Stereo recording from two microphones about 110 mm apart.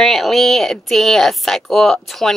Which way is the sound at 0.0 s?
Centre (ahead or behind).